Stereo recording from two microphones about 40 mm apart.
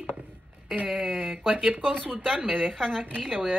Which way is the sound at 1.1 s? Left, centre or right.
Right.